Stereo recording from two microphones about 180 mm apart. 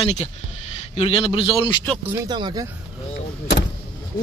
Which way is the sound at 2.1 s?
25° right (ahead or behind).